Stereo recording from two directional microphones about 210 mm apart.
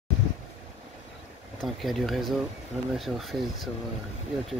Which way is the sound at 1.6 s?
Centre (ahead or behind).